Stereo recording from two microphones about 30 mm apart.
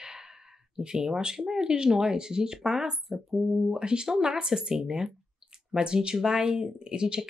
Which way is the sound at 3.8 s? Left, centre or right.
Right.